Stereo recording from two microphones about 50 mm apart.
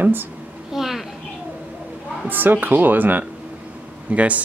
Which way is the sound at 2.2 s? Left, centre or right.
Right.